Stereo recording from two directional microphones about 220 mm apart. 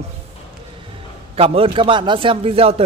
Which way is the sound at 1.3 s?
25° right (ahead or behind).